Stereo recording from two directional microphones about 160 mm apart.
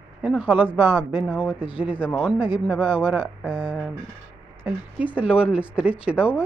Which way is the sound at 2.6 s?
10° right (ahead or behind).